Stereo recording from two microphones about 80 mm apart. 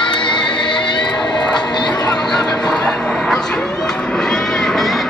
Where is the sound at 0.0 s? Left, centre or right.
Left.